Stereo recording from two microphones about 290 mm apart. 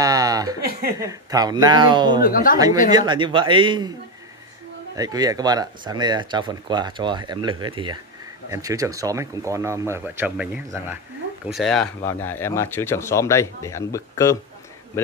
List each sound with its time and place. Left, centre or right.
0.0 s a sound: centre
0.9 s speech: centre
2.2 s speech: left
2.9 s speech: centre
4.9 s a man's voice: centre